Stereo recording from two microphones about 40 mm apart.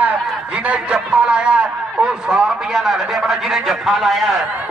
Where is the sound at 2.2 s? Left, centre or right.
Centre.